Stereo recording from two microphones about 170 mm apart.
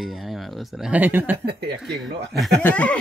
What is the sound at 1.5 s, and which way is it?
Speech, 75° right (ahead or behind).